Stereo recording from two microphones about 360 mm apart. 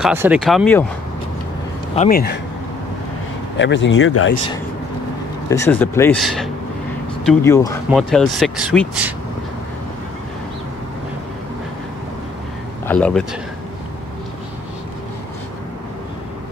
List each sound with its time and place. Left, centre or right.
0.0 s speech: centre
2.0 s speech: left
3.5 s speech: left
5.5 s speech: centre
12.8 s speech: centre